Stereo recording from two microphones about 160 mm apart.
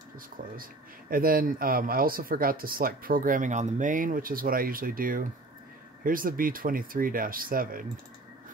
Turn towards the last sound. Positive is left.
turn(degrees=-65)  # may be behind; listen again after turning